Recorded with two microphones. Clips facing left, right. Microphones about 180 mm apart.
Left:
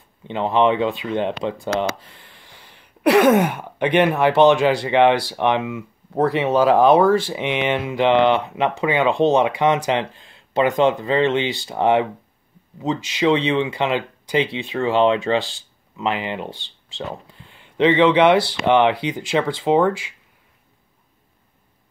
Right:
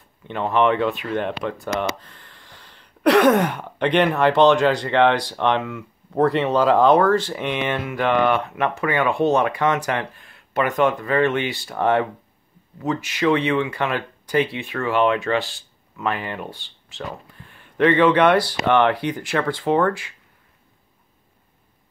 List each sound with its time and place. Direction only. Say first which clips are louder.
0.3 s speech: left 1 dB; 20° left (ahead or behind)
1.8 s speech: left 2 dB; 10° left (ahead or behind)